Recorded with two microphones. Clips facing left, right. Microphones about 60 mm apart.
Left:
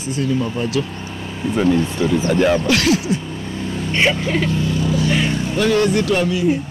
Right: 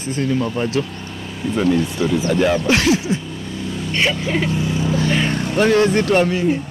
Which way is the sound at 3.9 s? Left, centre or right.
Left.